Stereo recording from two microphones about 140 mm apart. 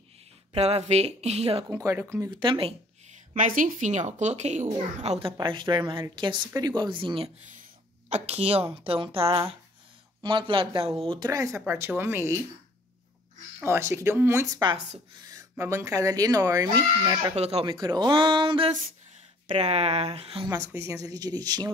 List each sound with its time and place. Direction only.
0.6 s a woman's voice: 50° right (ahead or behind)
1.7 s speech: 20° right (ahead or behind)
2.4 s speech: 35° right (ahead or behind)
3.3 s a woman's voice: 70° right (ahead or behind); by 5.3 s 50° right (ahead or behind)
5.4 s a woman's voice: 35° right (ahead or behind); by 12.4 s 20° right (ahead or behind)
13.6 s speech: 20° right (ahead or behind)
17.4 s a woman's voice: 45° right (ahead or behind)
17.7 s speech: 30° right (ahead or behind)
19.4 s a woman's voice: 50° right (ahead or behind)
20.4 s speech: 20° right (ahead or behind)